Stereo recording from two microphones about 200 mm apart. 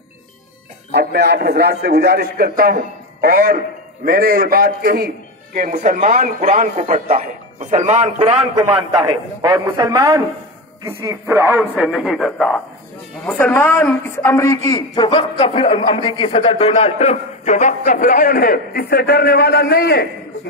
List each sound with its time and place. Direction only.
0.9 s a man's voice: 55° right (ahead or behind); by 8.3 s 35° right (ahead or behind)
9.4 s a man's voice: 20° right (ahead or behind); by 14.6 s 15° left (ahead or behind)
14.7 s a man's voice: 25° left (ahead or behind); by 20.1 s 50° left (ahead or behind)